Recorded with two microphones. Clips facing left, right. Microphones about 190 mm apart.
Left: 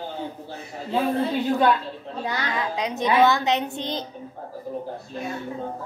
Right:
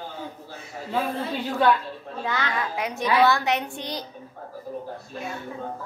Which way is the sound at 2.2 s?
15° left (ahead or behind).